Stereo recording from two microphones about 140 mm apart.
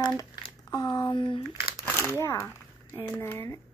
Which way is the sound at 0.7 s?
30° left (ahead or behind).